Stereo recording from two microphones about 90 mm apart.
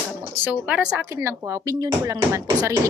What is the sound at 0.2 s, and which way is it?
Speech, 15° right (ahead or behind).